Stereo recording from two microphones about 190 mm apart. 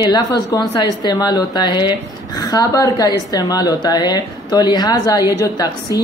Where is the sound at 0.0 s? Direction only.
20° left (ahead or behind).